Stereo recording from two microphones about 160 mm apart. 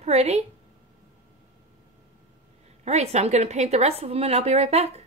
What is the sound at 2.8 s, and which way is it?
A woman's voice, 45° right (ahead or behind).